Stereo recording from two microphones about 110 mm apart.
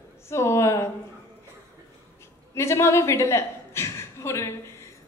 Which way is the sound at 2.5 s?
25° left (ahead or behind).